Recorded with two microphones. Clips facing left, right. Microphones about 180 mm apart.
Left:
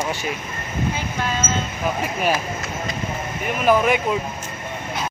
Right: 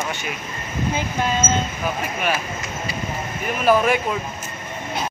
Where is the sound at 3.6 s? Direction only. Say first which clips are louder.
Even; 15° left (ahead or behind).